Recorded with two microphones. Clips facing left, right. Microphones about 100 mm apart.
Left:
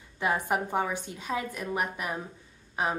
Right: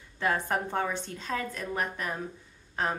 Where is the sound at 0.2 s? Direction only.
15° left (ahead or behind).